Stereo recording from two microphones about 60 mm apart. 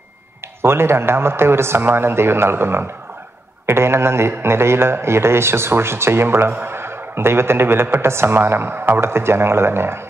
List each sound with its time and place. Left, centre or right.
0.6 s a man's voice: right